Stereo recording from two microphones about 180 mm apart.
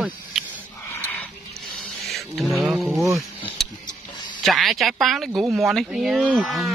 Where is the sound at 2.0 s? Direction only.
Centre (ahead or behind).